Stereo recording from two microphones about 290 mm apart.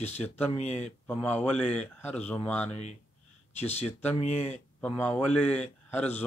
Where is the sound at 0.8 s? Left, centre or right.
Centre.